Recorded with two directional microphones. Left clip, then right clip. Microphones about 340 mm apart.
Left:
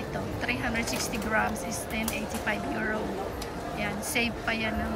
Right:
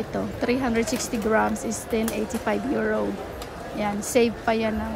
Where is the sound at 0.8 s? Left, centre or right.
Right.